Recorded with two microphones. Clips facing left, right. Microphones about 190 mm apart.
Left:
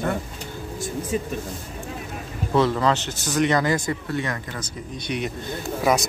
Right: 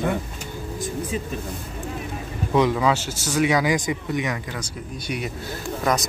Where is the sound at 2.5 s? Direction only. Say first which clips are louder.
Even; 10° right (ahead or behind).